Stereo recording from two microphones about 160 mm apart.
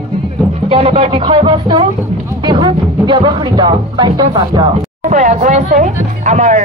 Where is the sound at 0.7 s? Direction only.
35° right (ahead or behind).